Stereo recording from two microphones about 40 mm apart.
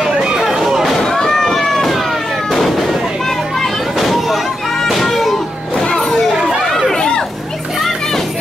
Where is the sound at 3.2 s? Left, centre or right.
Centre.